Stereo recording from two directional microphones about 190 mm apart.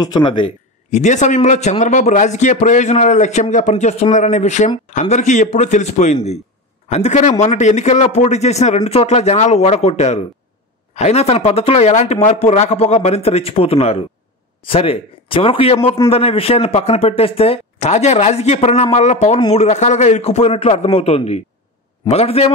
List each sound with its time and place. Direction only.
0.0 s speech: 25° left (ahead or behind)
0.8 s a man's voice: 40° left (ahead or behind)